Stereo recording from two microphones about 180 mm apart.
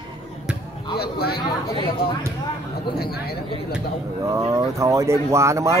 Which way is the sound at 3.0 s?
60° left (ahead or behind).